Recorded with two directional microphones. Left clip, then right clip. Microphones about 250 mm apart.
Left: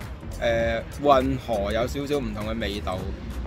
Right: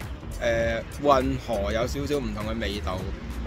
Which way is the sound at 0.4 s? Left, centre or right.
Centre.